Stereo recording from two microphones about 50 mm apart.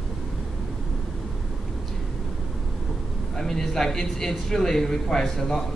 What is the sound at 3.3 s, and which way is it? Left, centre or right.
A man's voice, centre.